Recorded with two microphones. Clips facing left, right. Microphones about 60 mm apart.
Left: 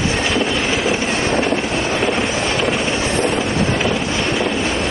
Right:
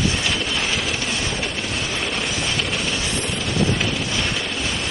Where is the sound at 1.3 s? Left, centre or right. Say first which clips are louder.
Left 10 dB; left.